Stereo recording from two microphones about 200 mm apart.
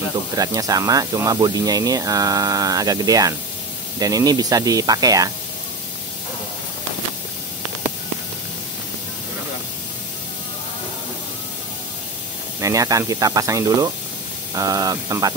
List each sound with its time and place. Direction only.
0.1 s speech: 20° right (ahead or behind)
12.5 s speech: 15° right (ahead or behind)